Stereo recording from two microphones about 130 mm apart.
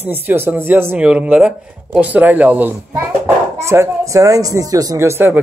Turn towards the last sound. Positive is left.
turn(degrees=-20)  # may be behind; listen again after turning